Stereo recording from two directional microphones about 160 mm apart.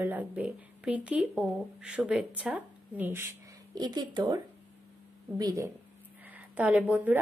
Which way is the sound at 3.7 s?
25° right (ahead or behind).